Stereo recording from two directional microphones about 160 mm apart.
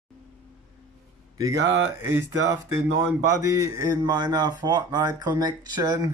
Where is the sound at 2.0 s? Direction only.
15° right (ahead or behind).